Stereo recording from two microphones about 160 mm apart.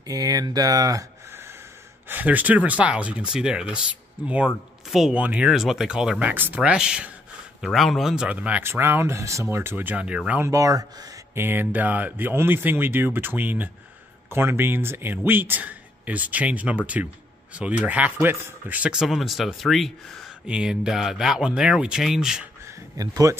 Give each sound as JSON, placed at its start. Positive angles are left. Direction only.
{"t": 0.0, "sound": "speech", "side_deg": -25}
{"t": 4.9, "sound": "speech", "side_deg": -5}
{"t": 10.5, "sound": "speech", "side_deg": -20}
{"t": 22.7, "sound": "speech", "side_deg": -20}